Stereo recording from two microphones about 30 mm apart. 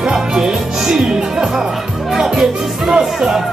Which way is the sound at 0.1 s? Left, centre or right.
Centre.